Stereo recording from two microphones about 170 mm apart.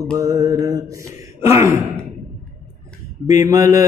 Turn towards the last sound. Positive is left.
turn(degrees=-20)  # may be behind; listen again after turning